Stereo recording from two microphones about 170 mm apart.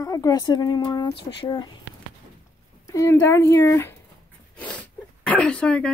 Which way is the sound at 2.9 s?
15° left (ahead or behind).